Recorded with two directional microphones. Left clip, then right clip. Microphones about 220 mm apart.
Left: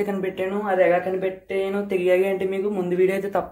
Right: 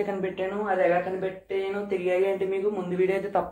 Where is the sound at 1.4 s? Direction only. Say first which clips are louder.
Left 4 dB; 45° left (ahead or behind).